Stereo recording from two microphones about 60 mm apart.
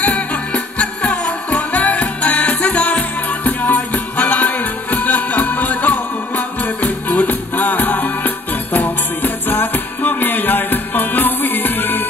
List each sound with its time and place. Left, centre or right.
0.0 s music: centre; by 12.0 s left